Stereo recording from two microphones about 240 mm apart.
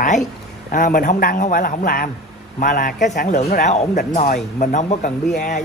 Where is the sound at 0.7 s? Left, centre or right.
Left.